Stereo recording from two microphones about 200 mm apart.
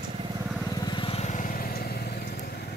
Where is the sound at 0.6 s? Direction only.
20° left (ahead or behind); by 2.5 s 50° left (ahead or behind).